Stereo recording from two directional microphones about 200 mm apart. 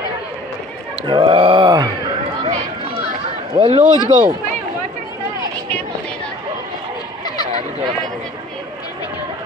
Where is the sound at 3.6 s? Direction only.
30° right (ahead or behind).